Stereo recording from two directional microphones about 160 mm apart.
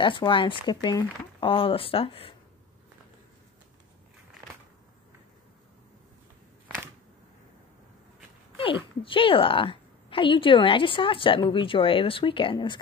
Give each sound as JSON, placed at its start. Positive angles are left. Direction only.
{"t": 0.0, "sound": "a woman's voice", "side_deg": 30}
{"t": 8.5, "sound": "a woman's voice", "side_deg": 35}